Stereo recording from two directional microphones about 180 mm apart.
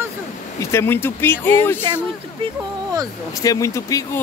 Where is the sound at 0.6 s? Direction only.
15° left (ahead or behind).